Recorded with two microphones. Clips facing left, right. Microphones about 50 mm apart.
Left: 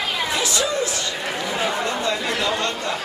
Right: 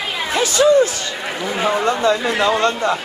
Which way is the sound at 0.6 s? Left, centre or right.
Right.